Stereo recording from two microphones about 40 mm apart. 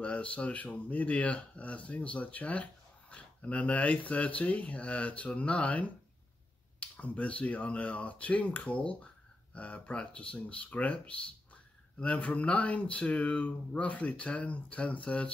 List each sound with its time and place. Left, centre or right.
0.0 s speech: left